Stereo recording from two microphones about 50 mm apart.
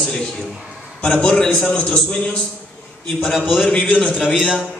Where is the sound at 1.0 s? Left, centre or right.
Centre.